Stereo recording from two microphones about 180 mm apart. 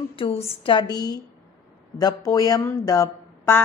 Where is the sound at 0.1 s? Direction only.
30° left (ahead or behind).